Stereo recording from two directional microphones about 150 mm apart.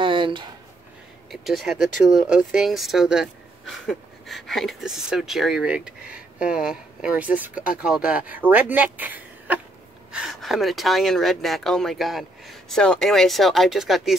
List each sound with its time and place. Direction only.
0.0 s a sound: 35° right (ahead or behind)
1.3 s speech: centre (ahead or behind)
10.1 s speech: centre (ahead or behind)